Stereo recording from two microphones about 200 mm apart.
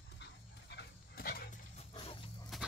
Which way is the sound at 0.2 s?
55° left (ahead or behind).